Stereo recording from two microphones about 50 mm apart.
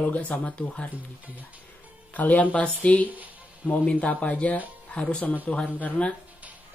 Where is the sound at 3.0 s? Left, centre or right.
Right.